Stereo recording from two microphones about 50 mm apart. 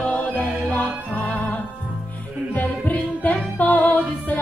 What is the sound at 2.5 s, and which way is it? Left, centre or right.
Music, left.